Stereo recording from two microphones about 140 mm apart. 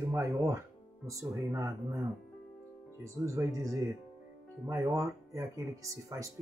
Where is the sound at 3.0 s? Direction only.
20° right (ahead or behind).